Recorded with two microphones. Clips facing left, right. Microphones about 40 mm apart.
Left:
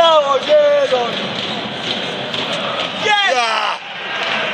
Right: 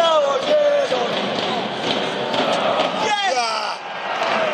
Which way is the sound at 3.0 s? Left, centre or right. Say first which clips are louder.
Left 5 dB; left.